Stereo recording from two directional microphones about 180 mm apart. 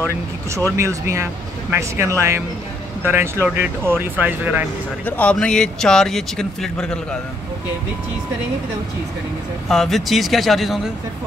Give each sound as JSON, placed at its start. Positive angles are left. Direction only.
{"t": 0.7, "sound": "a man's voice", "side_deg": -15}
{"t": 5.0, "sound": "speech", "side_deg": 10}
{"t": 9.7, "sound": "speech", "side_deg": 0}